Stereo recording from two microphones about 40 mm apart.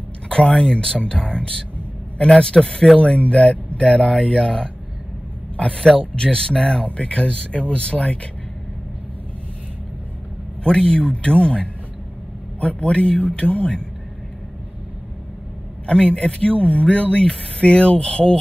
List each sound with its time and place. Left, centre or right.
0.3 s speech: centre
3.0 s a man's voice: left
4.1 s speech: centre
5.9 s speech: centre
10.6 s a man's voice: left
15.9 s speech: left